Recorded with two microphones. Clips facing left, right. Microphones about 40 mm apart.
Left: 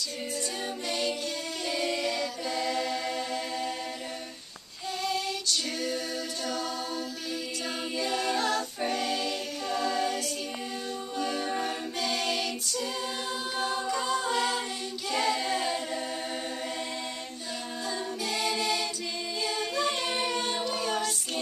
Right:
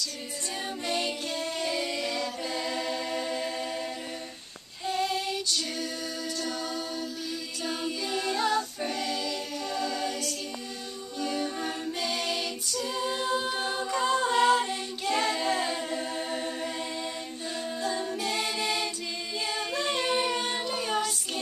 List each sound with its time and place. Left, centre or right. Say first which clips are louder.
0.8 s music: right 1 dB; centre
1.6 s music: left 3 dB; centre
2.1 s a capella: left 1 dB; centre
4.8 s child singing: right 2 dB; centre
6.4 s a capella: left 2 dB; centre
8.4 s a capella: right 2 dB; centre
8.8 s a capella: left 2 dB; centre
15.3 s a capella: right 1 dB; centre
18.2 s music: left 3 dB; centre
19.4 s a capella: left 1 dB; centre